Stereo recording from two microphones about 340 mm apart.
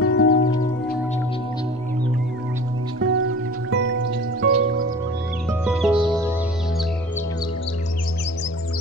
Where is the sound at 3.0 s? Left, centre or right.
Right.